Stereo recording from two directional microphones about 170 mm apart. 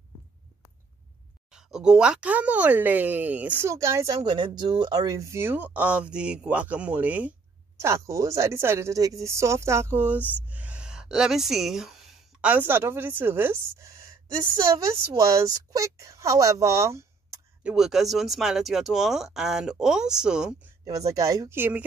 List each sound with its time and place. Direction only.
1.5 s speech: 5° right (ahead or behind)
15.1 s speech: 20° right (ahead or behind)
17.6 s speech: centre (ahead or behind)
20.8 s speech: 20° right (ahead or behind)